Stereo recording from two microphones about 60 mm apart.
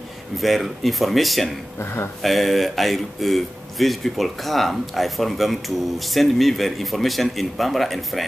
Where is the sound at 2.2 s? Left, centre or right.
Centre.